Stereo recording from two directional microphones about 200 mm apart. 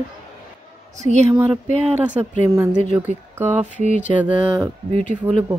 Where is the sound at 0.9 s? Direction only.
35° right (ahead or behind).